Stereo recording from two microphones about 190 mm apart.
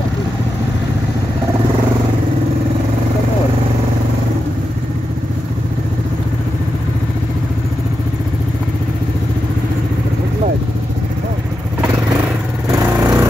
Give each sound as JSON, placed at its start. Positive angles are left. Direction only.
{"t": 12.7, "sound": "vehicle", "side_deg": -15}